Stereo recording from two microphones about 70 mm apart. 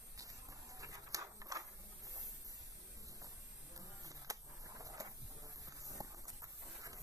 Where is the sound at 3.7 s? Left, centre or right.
Right.